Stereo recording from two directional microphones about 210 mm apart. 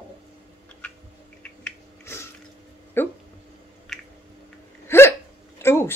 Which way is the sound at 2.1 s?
10° left (ahead or behind).